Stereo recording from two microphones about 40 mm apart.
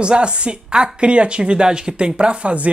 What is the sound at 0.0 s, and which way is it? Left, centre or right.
Speech, right.